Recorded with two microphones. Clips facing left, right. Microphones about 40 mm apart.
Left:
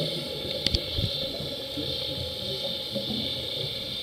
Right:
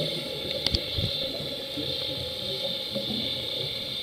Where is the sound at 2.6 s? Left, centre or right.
Centre.